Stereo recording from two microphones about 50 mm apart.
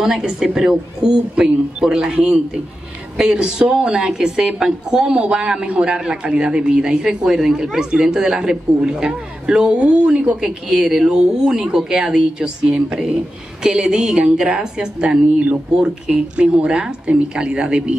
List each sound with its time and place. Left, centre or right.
0.0 s a woman's voice: centre
3.2 s a woman's voice: centre